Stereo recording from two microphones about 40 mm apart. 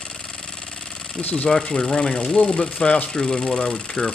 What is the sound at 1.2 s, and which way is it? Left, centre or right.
Speech, left.